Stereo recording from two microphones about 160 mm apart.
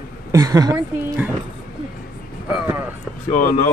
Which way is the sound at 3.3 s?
60° left (ahead or behind).